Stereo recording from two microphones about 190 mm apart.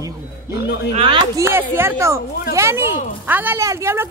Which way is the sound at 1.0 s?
25° right (ahead or behind).